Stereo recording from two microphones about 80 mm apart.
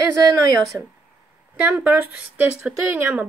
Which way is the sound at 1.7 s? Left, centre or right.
Right.